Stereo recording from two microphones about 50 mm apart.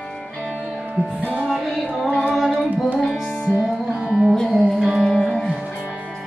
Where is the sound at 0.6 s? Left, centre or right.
Centre.